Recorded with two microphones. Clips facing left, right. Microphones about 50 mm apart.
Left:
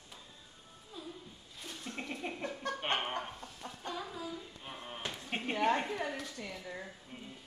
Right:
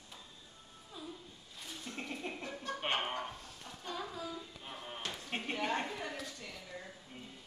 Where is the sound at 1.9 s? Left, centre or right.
Centre.